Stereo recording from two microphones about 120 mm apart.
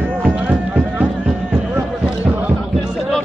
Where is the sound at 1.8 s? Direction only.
10° right (ahead or behind).